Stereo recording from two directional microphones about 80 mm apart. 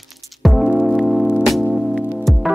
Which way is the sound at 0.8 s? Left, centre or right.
Centre.